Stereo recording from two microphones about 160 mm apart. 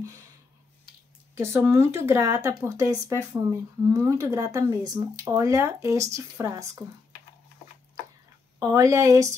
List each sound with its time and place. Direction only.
1.3 s speech: 15° right (ahead or behind)
8.5 s speech: 20° right (ahead or behind)